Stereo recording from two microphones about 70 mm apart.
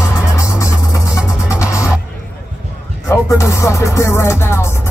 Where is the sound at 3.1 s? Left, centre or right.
Left.